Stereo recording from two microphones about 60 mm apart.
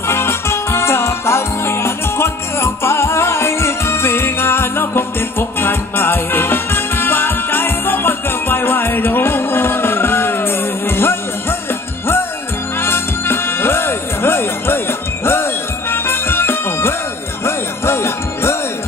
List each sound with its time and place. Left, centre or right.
0.1 s music: left
12.8 s music: left